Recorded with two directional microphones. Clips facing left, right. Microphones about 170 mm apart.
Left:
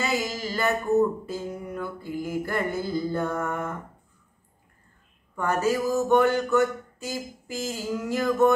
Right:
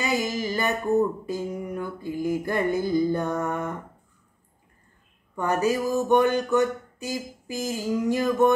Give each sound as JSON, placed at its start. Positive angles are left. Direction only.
{"t": 0.0, "sound": "music", "side_deg": -20}
{"t": 5.3, "sound": "music", "side_deg": -15}